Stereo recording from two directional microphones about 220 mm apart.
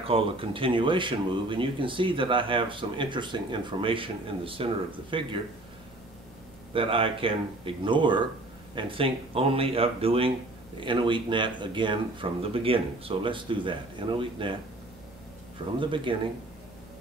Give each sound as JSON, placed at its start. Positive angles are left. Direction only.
{"t": 0.0, "sound": "speech", "side_deg": -25}
{"t": 6.7, "sound": "speech", "side_deg": -25}
{"t": 15.8, "sound": "speech", "side_deg": -20}